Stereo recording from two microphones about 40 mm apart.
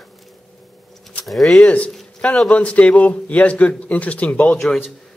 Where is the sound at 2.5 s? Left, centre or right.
Left.